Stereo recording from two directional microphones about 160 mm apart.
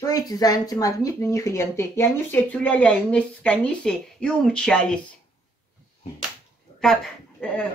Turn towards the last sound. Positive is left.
turn(degrees=5)  # may be behind; listen again after turning